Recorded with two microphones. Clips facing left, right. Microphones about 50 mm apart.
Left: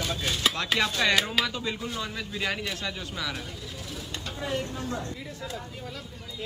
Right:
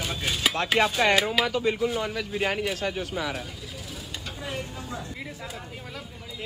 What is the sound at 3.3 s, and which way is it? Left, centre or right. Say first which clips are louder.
Vehicle: right 2 dB; centre.